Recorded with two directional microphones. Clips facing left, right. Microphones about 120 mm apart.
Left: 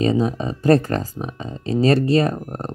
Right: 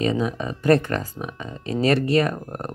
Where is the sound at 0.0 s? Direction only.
35° left (ahead or behind).